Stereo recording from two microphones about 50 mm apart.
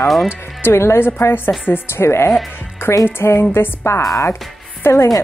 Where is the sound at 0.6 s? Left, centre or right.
Left.